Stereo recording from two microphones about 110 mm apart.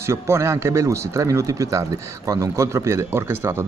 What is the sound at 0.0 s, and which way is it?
Speech, 25° right (ahead or behind).